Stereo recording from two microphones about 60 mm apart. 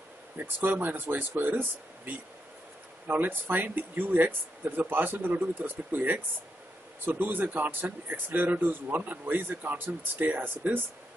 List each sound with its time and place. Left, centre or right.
0.7 s speech: right